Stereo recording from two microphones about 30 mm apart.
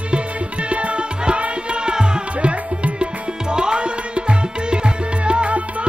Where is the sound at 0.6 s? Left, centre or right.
Right.